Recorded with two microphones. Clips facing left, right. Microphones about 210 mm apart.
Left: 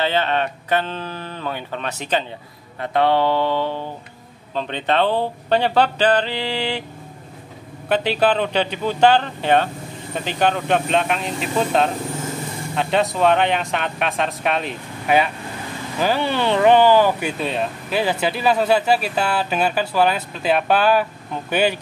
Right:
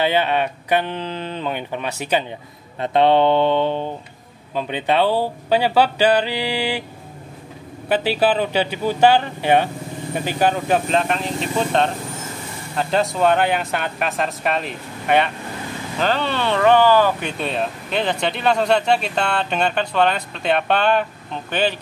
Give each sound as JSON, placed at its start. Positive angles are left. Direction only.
{"t": 0.0, "sound": "speech", "side_deg": -10}
{"t": 2.8, "sound": "mantra", "side_deg": -20}
{"t": 4.6, "sound": "speech", "side_deg": -10}
{"t": 7.9, "sound": "speech", "side_deg": -5}